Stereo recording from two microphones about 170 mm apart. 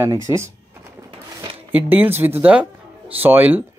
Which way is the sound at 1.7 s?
10° right (ahead or behind).